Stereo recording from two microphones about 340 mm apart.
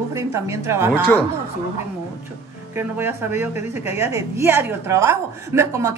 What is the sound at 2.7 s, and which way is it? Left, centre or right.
A woman's voice, centre.